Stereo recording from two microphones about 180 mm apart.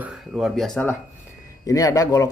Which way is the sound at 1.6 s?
20° left (ahead or behind).